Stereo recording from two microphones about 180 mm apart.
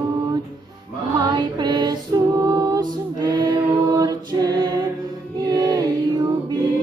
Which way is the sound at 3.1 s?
20° right (ahead or behind).